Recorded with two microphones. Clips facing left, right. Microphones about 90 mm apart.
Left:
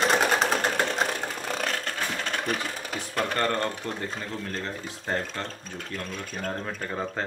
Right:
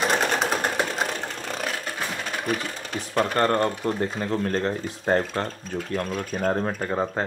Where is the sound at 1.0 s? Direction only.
Centre (ahead or behind).